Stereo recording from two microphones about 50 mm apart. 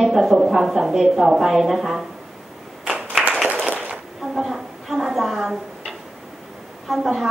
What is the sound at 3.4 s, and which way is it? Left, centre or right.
Clapping, right.